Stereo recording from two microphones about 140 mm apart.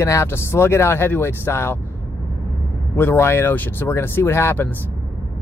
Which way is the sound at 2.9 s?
15° left (ahead or behind).